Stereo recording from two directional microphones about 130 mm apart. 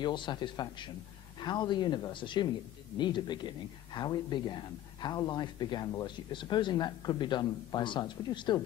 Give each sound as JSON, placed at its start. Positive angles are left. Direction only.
{"t": 0.0, "sound": "speech", "side_deg": 35}